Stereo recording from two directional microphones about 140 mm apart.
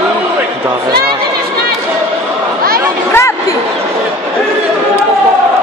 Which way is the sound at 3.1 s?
15° left (ahead or behind).